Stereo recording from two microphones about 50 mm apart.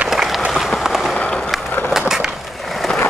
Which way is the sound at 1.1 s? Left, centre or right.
Left.